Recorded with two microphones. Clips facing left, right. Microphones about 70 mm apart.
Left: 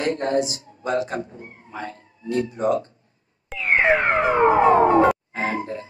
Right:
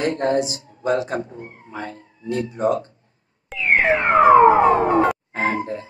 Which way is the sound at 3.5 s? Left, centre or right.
Centre.